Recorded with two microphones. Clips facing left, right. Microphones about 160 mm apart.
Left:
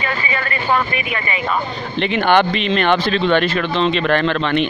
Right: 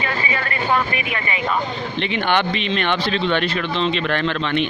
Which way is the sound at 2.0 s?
45° left (ahead or behind).